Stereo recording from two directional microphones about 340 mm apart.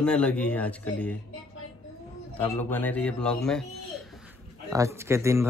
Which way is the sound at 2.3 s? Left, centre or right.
Centre.